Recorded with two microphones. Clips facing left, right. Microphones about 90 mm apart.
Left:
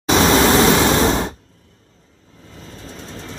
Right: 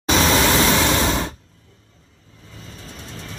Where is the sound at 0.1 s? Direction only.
25° left (ahead or behind).